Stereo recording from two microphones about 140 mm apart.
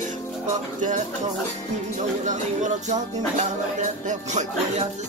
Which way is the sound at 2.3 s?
60° right (ahead or behind).